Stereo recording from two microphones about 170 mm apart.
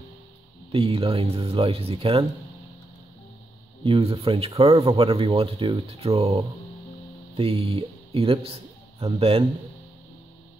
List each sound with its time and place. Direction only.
0.7 s speech: 30° right (ahead or behind)
3.8 s a man's voice: 30° right (ahead or behind)